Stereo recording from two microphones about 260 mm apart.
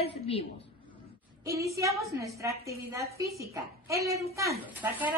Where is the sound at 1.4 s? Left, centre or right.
Centre.